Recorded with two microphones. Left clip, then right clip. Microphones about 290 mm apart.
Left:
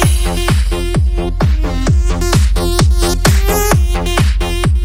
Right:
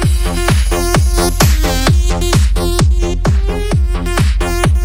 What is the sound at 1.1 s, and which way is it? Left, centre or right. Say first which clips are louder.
Music: right 6 dB; right.